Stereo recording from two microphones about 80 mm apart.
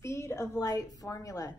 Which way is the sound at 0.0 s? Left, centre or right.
Left.